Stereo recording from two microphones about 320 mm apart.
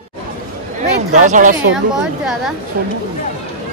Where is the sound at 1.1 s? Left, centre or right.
Right.